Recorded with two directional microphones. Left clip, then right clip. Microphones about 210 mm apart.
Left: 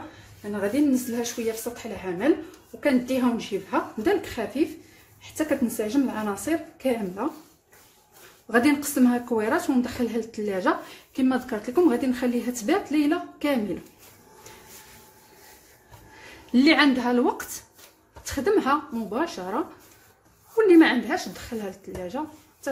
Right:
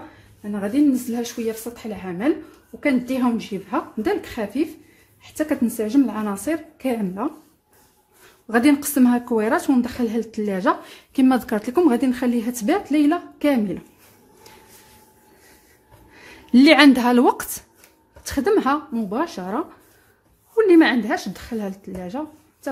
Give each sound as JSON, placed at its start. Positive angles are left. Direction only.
{"t": 0.4, "sound": "a woman's voice", "side_deg": -35}
{"t": 8.5, "sound": "a woman's voice", "side_deg": -45}
{"t": 16.5, "sound": "a woman's voice", "side_deg": -50}